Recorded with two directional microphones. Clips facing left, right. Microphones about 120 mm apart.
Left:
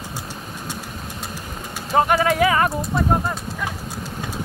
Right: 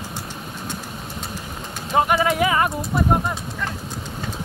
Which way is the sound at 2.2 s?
15° right (ahead or behind).